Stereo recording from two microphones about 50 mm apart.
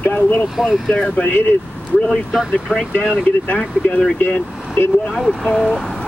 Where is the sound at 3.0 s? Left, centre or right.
Centre.